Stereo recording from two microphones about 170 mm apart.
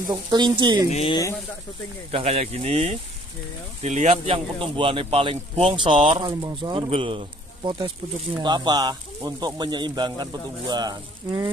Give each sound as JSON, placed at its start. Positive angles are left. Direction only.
{"t": 0.3, "sound": "speech", "side_deg": -25}
{"t": 0.8, "sound": "speech", "side_deg": 40}
{"t": 2.0, "sound": "speech", "side_deg": -35}